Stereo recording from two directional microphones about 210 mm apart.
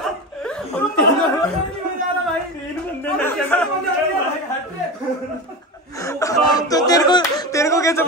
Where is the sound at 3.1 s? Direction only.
5° left (ahead or behind).